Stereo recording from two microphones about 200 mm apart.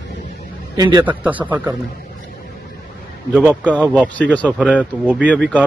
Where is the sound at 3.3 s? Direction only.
5° left (ahead or behind).